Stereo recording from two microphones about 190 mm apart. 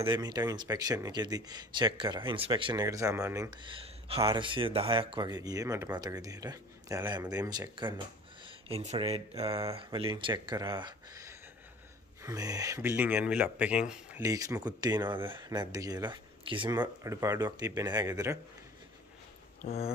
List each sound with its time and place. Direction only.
0.0 s speech: 20° right (ahead or behind)
8.5 s a sound: 30° right (ahead or behind)
8.9 s speech: 30° right (ahead or behind); by 14.2 s 5° right (ahead or behind)
14.2 s speech: 15° right (ahead or behind)
19.6 s speech: 35° left (ahead or behind)